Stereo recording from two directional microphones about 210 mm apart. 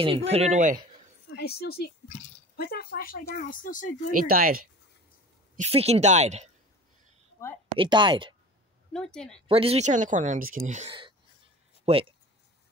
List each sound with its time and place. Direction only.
0.0 s speech: 25° right (ahead or behind)
1.3 s speech: 50° left (ahead or behind)
4.3 s speech: 45° right (ahead or behind)
5.6 s speech: 30° right (ahead or behind)
7.7 s speech: 20° right (ahead or behind)
8.9 s a woman's voice: 5° left (ahead or behind)
9.5 s speech: 30° right (ahead or behind)